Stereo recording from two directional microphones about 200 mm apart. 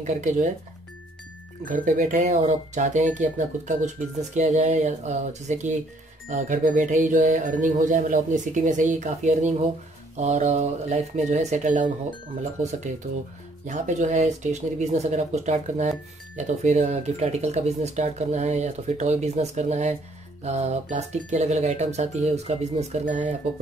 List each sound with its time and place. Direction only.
0.0 s speech: 40° right (ahead or behind)
1.6 s speech: 40° right (ahead or behind)
13.7 s speech: 40° right (ahead or behind)